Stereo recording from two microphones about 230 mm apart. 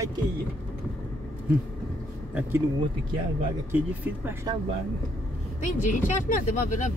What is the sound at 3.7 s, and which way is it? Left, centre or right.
Speech, centre.